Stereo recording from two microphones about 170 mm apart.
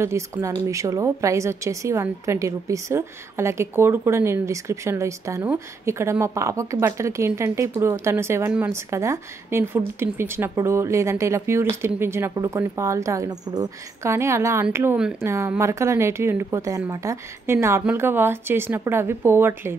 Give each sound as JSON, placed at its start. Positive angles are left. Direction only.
{"t": 0.0, "sound": "a woman's voice", "side_deg": -15}
{"t": 15.2, "sound": "a woman's voice", "side_deg": -15}